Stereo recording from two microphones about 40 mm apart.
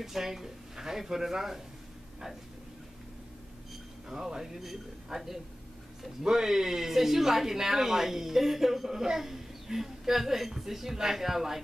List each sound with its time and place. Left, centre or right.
0.0 s speech: centre
4.1 s speech: centre